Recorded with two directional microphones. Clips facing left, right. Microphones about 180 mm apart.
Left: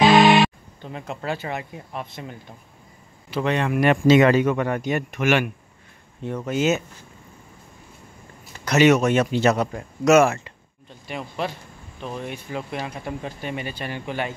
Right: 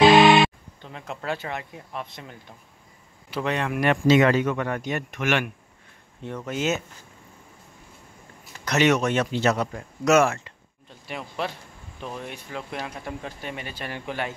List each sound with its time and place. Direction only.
0.8 s speech: 5° left (ahead or behind)
4.1 s speech: 15° left (ahead or behind)
8.5 s speech: 5° left (ahead or behind)